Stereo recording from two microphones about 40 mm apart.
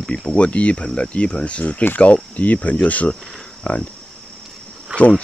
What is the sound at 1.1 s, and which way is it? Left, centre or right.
Speech, left.